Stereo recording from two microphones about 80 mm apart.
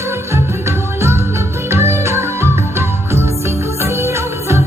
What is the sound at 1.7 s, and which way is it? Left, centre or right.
Music, right.